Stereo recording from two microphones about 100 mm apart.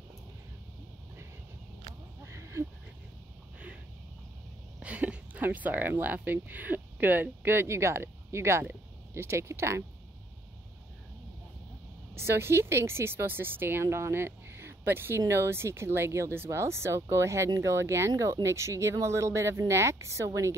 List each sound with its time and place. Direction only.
2.2 s a sound: 30° right (ahead or behind)
4.8 s speech: 10° right (ahead or behind)
12.2 s speech: 25° right (ahead or behind)